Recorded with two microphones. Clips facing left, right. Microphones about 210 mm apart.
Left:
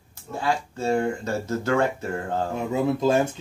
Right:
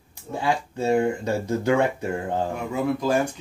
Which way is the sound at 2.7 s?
25° left (ahead or behind).